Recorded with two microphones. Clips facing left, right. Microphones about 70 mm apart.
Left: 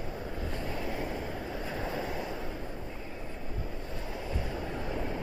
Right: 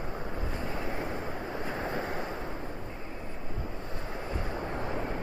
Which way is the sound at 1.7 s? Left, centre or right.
Right.